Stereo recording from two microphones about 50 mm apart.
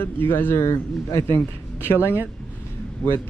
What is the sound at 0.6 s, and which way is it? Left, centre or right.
Speech, left.